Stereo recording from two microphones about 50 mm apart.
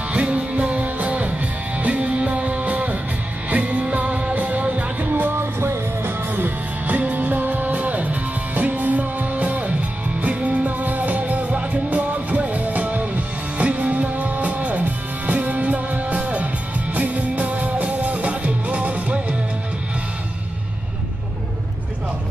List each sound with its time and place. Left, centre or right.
0.1 s music: right